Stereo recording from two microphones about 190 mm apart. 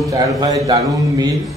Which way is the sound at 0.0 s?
20° right (ahead or behind).